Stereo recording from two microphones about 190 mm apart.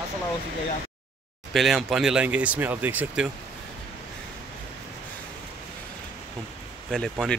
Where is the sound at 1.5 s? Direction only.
Centre (ahead or behind).